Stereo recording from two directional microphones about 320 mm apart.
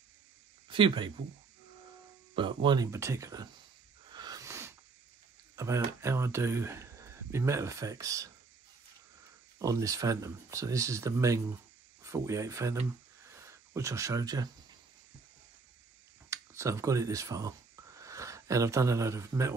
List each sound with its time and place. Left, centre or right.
0.7 s speech: centre
2.3 s speech: centre
4.1 s wheeze: centre
5.6 s speech: centre
9.6 s speech: centre
16.3 s speech: centre